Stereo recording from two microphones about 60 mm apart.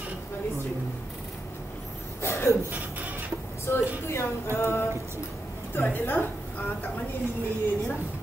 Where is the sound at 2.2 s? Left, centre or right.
Left.